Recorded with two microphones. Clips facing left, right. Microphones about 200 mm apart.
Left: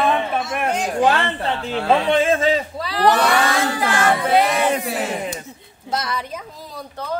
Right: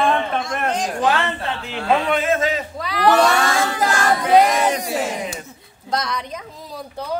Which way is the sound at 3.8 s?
40° right (ahead or behind).